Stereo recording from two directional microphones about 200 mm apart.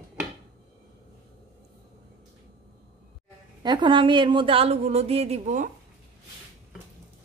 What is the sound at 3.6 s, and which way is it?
A woman's voice, 20° right (ahead or behind).